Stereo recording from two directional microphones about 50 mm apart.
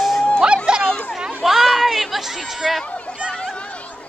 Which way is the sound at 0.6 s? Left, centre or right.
Centre.